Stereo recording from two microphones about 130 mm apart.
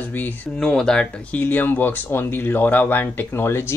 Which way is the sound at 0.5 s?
5° left (ahead or behind).